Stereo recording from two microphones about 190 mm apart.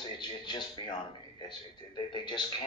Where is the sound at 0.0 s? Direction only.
25° left (ahead or behind).